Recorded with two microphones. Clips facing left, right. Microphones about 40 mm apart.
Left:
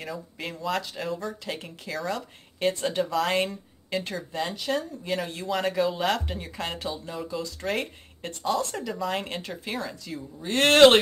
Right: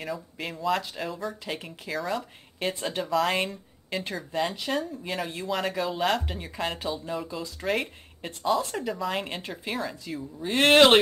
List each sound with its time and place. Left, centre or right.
0.0 s speech: centre